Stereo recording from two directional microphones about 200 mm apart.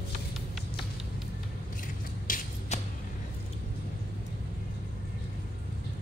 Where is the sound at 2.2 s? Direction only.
40° left (ahead or behind).